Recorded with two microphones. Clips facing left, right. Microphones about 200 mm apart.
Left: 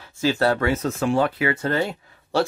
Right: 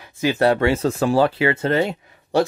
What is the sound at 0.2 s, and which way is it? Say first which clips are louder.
Speech: right 3 dB; 20° right (ahead or behind).